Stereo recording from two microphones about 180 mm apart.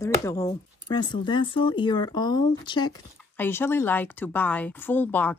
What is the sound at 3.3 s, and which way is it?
Speech, 10° left (ahead or behind).